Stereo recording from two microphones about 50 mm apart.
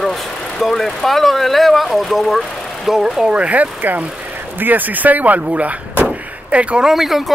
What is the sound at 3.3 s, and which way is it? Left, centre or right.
Speech, right.